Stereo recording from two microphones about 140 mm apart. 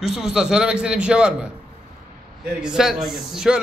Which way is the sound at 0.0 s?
5° right (ahead or behind).